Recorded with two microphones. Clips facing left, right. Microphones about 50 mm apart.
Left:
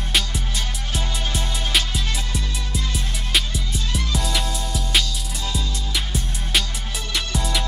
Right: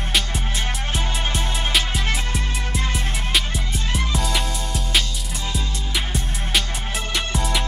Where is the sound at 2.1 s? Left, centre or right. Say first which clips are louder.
Right 3 dB; right.